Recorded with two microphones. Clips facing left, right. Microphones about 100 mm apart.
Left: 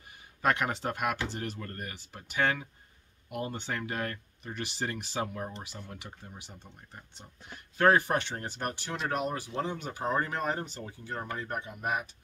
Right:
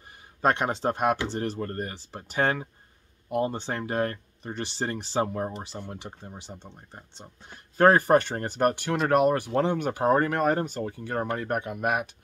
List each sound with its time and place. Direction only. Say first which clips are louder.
0.4 s speech: right 4 dB; 30° right (ahead or behind); by 12.1 s 70° right (ahead or behind)